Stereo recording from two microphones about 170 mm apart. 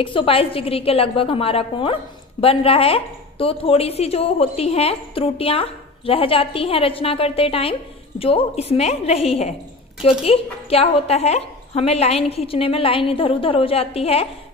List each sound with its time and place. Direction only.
0.0 s a woman's voice: 30° left (ahead or behind)